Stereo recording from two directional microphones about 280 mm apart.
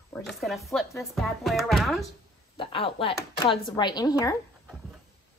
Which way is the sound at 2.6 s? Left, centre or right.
Centre.